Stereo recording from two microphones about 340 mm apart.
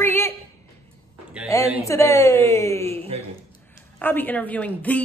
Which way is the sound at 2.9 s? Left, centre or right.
Centre.